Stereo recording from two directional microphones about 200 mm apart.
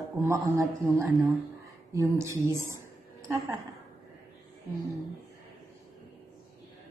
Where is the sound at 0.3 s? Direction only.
15° right (ahead or behind).